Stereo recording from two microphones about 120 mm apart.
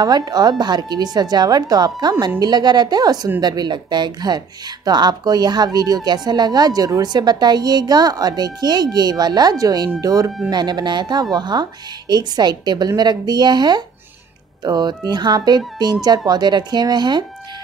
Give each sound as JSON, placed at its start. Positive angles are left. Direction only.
{"t": 0.0, "sound": "speech", "side_deg": -35}